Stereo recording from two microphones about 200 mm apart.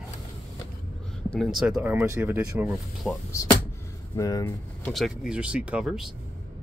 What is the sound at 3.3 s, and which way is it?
Speech, 15° left (ahead or behind).